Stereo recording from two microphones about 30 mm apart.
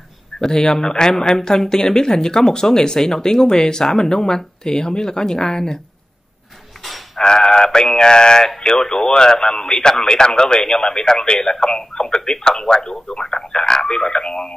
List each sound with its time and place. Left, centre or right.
0.4 s speech: centre
7.2 s speech: left